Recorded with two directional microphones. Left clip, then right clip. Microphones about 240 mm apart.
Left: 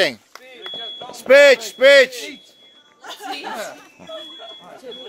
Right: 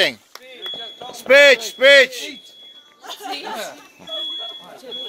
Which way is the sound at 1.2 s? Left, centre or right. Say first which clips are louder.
Even; centre.